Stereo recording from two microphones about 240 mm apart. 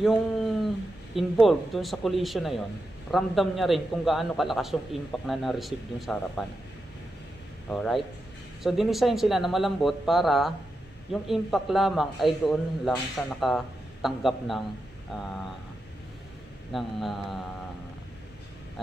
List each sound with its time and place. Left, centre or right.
0.0 s a man's voice: centre
7.7 s a man's voice: centre
16.7 s a man's voice: centre